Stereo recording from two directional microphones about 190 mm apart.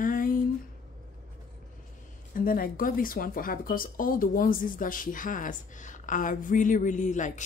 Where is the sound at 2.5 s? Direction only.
50° left (ahead or behind).